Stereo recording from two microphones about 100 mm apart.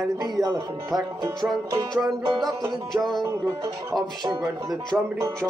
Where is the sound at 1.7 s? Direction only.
40° right (ahead or behind).